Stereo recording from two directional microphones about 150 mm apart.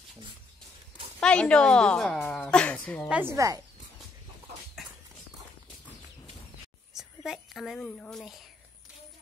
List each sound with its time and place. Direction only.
1.2 s a woman's voice: 5° left (ahead or behind)
3.1 s a woman's voice: 15° right (ahead or behind)
6.9 s a woman's voice: 5° right (ahead or behind)